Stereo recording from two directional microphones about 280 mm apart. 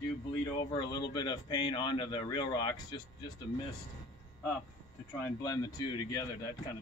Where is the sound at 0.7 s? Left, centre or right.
Centre.